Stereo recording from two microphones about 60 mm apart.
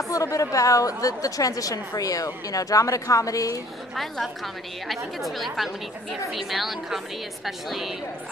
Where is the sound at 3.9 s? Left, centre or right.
Centre.